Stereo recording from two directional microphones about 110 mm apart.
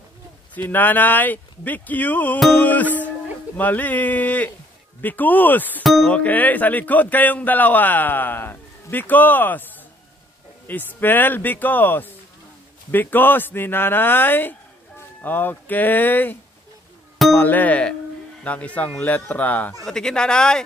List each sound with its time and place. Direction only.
0.6 s speech: 15° left (ahead or behind)
2.5 s music: 15° left (ahead or behind)
3.5 s speech: 15° left (ahead or behind)
5.9 s speech: 5° left (ahead or behind)
10.7 s speech: 15° left (ahead or behind)
17.4 s speech: 15° left (ahead or behind)